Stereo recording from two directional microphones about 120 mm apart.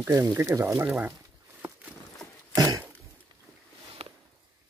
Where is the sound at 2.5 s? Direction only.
30° right (ahead or behind).